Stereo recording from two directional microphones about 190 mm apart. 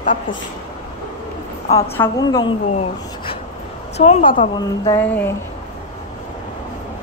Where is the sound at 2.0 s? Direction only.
20° left (ahead or behind).